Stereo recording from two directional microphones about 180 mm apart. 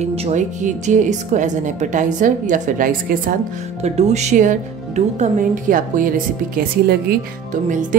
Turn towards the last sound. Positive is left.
turn(degrees=-45)  # may be behind; listen again after turning